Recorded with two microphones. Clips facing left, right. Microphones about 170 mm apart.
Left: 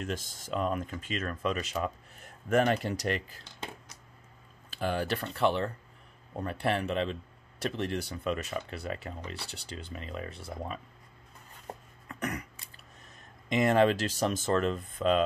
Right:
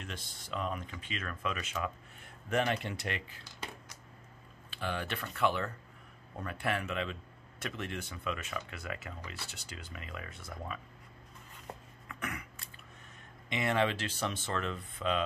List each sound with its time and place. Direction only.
0.0 s speech: 45° left (ahead or behind)
4.6 s speech: 40° left (ahead or behind)
11.6 s cough: 40° left (ahead or behind)
13.5 s speech: 40° left (ahead or behind)